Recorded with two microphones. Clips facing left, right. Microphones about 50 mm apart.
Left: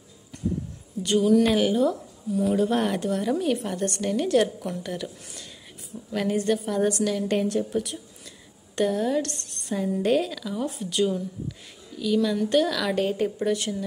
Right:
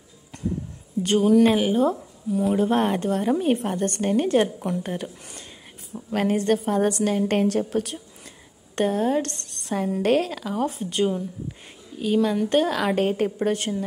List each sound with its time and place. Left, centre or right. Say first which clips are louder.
1.0 s a woman's voice: right 2 dB; right
1.3 s speech: right 3 dB; right
1.8 s a woman's voice: right 2 dB; right
7.2 s a woman's voice: right 3 dB; right
8.7 s a woman's voice: right 2 dB; right